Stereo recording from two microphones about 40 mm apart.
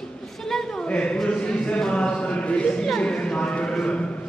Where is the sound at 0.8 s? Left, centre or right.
Left.